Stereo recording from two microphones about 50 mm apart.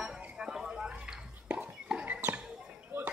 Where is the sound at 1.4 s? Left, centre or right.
Right.